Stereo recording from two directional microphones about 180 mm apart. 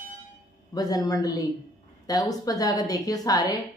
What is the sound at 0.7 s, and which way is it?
A woman's voice, 20° left (ahead or behind).